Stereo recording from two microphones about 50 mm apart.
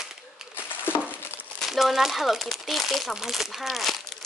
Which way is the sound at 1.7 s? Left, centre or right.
Centre.